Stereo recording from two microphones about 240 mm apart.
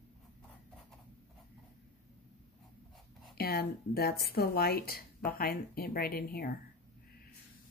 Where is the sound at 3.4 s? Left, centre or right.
Left.